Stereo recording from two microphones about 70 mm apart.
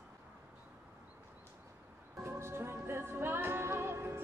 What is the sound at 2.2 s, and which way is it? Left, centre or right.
Music, right.